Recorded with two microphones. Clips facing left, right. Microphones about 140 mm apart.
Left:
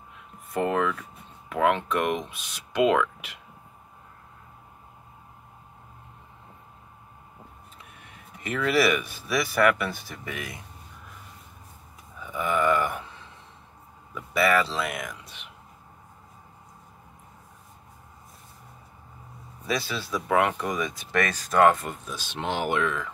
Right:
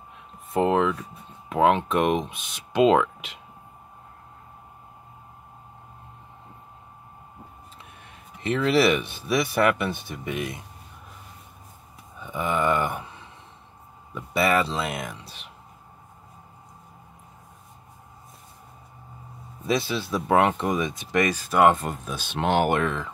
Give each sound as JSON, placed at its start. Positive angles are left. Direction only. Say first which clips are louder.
{"t": 0.5, "sound": "a sound", "louder": "right 4 dB", "side_deg": -20}
{"t": 1.5, "sound": "speech", "louder": "right 3 dB", "side_deg": -20}
{"t": 8.4, "sound": "speech", "louder": "right 3 dB", "side_deg": -25}
{"t": 12.2, "sound": "a sound", "louder": "even", "side_deg": -25}
{"t": 14.1, "sound": "speech", "louder": "even", "side_deg": -25}
{"t": 19.6, "sound": "speech", "louder": "right 4 dB", "side_deg": -25}
{"t": 21.8, "sound": "speech", "louder": "right 4 dB", "side_deg": -50}